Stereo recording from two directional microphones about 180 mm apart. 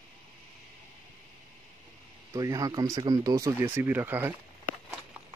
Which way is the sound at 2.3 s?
20° right (ahead or behind).